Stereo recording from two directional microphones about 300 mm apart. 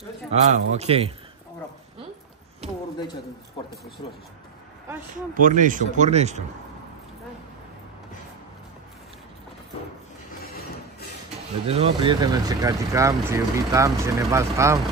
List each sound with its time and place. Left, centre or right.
0.3 s speech: right
5.1 s speech: right
11.6 s speech: centre